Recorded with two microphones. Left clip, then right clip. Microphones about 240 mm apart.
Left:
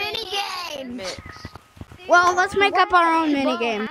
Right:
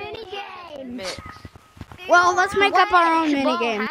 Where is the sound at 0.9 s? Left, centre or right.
Centre.